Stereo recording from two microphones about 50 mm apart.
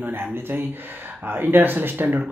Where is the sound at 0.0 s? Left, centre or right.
Right.